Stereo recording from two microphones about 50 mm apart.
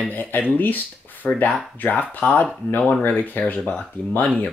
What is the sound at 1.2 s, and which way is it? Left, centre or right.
Speech, left.